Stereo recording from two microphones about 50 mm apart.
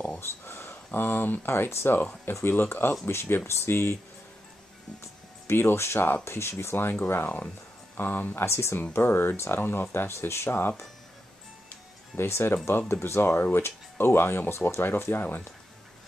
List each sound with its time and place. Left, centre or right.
0.2 s speech: left
5.0 s speech: left
6.6 s speech: left
8.5 s speech: left
8.9 s speech: left
10.1 s speech: left
12.2 s speech: left